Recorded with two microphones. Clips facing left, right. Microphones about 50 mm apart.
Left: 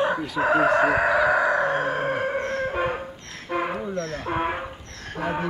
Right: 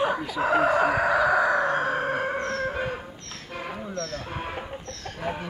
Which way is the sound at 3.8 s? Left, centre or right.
Left.